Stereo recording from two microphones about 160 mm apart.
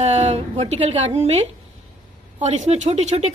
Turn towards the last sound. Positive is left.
turn(degrees=-45)  # may be behind; listen again after turning